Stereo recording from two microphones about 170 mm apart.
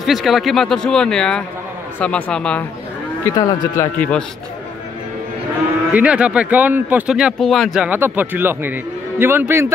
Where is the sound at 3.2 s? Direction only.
25° left (ahead or behind).